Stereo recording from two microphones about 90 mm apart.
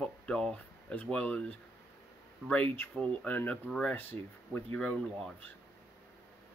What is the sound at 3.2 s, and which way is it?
Speech, 20° left (ahead or behind).